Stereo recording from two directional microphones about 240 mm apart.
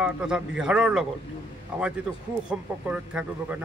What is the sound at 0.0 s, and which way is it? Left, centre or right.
Speech, centre.